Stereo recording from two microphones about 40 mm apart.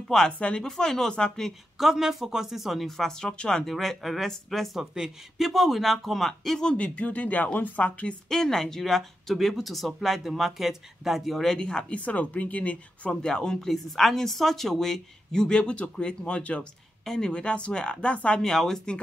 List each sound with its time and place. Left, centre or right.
0.1 s speech: centre
1.8 s speech: centre
3.6 s speech: centre
4.7 s speech: centre
6.6 s speech: left
8.3 s speech: centre
11.3 s speech: centre
11.9 s speech: left
13.1 s speech: centre
17.0 s a woman's voice: centre
17.3 s speech: left
18.4 s speech: centre